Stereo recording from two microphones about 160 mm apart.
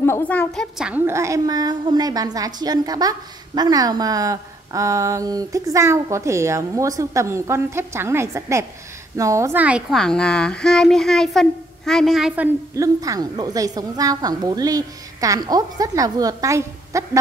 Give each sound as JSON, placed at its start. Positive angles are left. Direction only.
{"t": 0.0, "sound": "a woman's voice", "side_deg": 15}
{"t": 12.7, "sound": "a woman's voice", "side_deg": -20}